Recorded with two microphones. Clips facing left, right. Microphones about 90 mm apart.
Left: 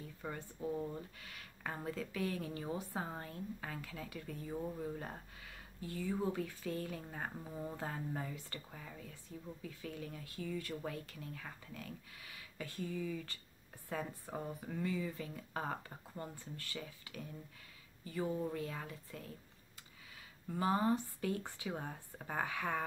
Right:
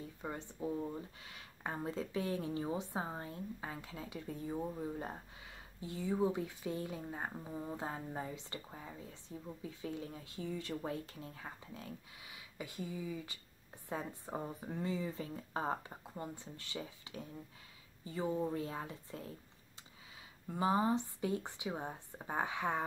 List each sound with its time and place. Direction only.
0.2 s speech: 20° right (ahead or behind)
1.2 s a sound: 25° right (ahead or behind)
1.9 s speech: 25° right (ahead or behind)
20.4 s speech: 20° right (ahead or behind)